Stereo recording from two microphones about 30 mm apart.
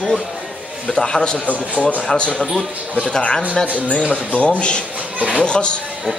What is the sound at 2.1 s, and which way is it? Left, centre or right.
A man's voice, left.